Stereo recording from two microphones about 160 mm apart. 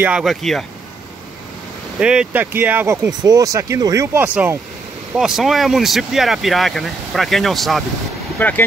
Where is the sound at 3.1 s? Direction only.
20° right (ahead or behind); by 7.8 s centre (ahead or behind).